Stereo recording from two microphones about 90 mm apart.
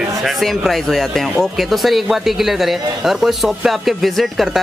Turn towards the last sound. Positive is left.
turn(degrees=0)  # may be behind; listen again after turning